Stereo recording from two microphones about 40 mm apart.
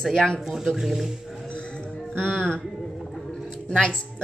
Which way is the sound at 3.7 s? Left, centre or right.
Left.